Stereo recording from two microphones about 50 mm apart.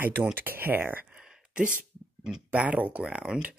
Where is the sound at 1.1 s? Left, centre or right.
Centre.